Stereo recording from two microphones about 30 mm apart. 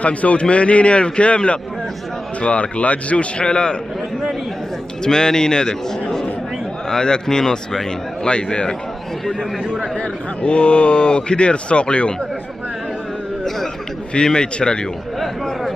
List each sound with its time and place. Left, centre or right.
0.0 s a man's voice: left
3.3 s speech: left
5.0 s a man's voice: left
8.3 s speech: left
10.4 s speech: left
14.1 s a man's voice: left